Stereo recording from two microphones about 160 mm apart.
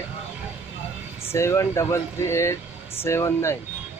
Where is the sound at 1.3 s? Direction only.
15° left (ahead or behind).